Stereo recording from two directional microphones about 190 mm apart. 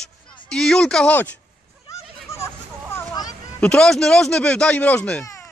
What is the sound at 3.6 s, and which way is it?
Speech, 5° left (ahead or behind).